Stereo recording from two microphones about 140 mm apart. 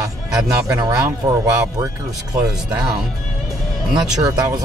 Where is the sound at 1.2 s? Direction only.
45° right (ahead or behind).